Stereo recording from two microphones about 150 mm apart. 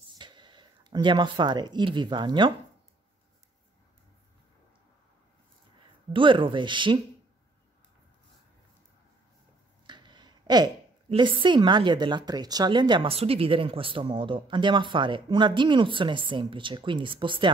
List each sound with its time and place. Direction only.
0.2 s speech: 30° right (ahead or behind)
6.1 s a woman's voice: 35° right (ahead or behind)
9.8 s a sound: 30° right (ahead or behind)
11.1 s a woman's voice: 35° right (ahead or behind)